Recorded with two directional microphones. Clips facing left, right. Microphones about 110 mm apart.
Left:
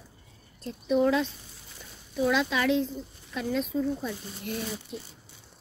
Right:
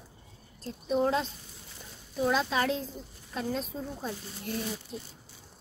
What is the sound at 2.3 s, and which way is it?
Speech, 40° right (ahead or behind).